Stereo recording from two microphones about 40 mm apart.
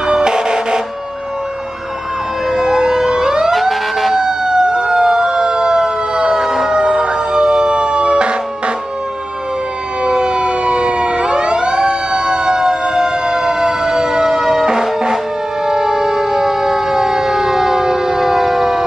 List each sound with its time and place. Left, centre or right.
0.0 s vehicle: centre
2.5 s emergency vehicle: centre
3.5 s emergency vehicle: centre
4.2 s emergency vehicle: centre
6.4 s fire engine: centre
6.7 s emergency vehicle: centre
10.0 s emergency vehicle: right; by 14.7 s centre
14.7 s music: centre
15.6 s siren: centre